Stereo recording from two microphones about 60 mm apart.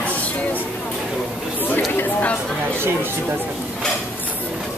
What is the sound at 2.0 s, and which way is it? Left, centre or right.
Chatter, left.